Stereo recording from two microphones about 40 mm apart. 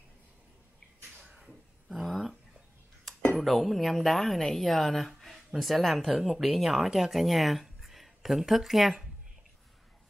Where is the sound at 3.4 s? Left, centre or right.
Centre.